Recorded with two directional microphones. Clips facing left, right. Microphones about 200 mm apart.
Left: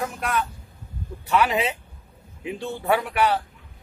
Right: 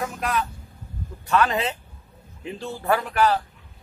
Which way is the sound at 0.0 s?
Centre (ahead or behind).